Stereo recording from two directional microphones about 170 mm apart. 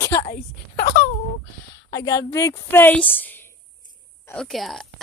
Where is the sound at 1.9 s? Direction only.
20° left (ahead or behind).